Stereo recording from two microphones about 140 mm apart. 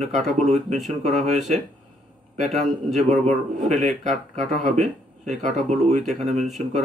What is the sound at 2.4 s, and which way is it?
Speech, 55° right (ahead or behind).